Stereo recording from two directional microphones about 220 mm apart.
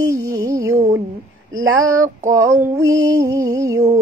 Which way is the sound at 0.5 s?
15° right (ahead or behind).